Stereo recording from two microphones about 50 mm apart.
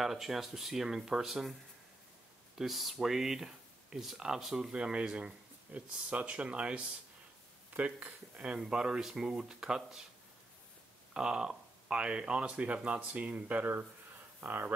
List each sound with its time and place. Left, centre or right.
0.0 s speech: centre; by 8.5 s right
8.5 s speech: centre
11.1 s speech: centre
14.4 s speech: right